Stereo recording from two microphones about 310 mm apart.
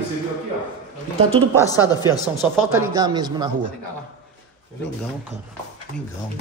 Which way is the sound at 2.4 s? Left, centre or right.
Centre.